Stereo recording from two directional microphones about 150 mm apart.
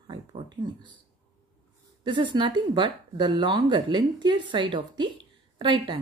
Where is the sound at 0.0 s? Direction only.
35° right (ahead or behind).